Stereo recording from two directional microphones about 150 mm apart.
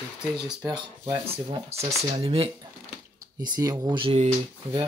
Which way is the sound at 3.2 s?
25° right (ahead or behind).